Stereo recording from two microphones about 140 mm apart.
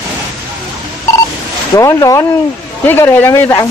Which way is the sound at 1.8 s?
25° left (ahead or behind).